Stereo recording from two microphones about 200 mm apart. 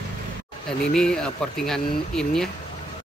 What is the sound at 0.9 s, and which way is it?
Speech, 5° left (ahead or behind).